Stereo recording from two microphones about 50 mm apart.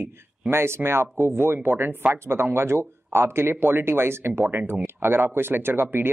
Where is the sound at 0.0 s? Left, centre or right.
Right.